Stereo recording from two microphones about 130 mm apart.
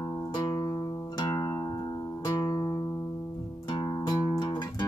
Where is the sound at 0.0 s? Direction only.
25° left (ahead or behind).